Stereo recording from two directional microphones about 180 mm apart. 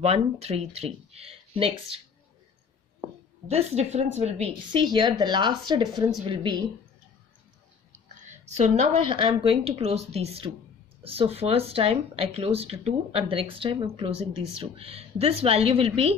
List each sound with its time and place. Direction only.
0.0 s speech: 35° right (ahead or behind)
3.0 s a woman's voice: 35° right (ahead or behind)
8.2 s speech: 40° right (ahead or behind)